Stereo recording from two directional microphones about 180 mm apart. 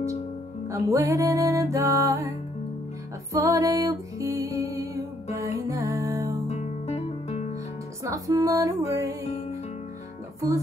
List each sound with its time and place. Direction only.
0.7 s music: 15° right (ahead or behind)
3.4 s music: 15° right (ahead or behind)
6.4 s guitar: 40° left (ahead or behind)
8.0 s music: 15° right (ahead or behind)